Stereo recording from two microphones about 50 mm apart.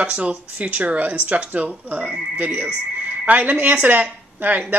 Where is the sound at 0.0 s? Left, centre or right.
Right.